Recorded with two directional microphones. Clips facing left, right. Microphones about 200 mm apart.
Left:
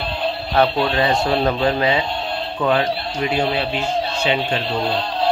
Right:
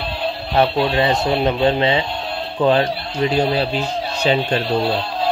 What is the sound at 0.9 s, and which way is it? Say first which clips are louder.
A man's voice: right 1 dB; 20° right (ahead or behind).